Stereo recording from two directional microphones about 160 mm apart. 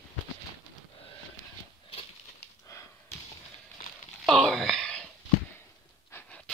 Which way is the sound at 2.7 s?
20° left (ahead or behind).